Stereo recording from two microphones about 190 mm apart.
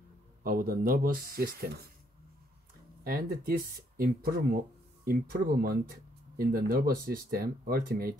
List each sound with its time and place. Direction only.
0.4 s speech: 50° right (ahead or behind)
3.0 s speech: 50° right (ahead or behind)